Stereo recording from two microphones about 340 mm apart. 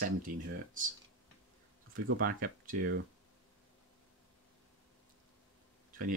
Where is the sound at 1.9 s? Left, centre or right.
Right.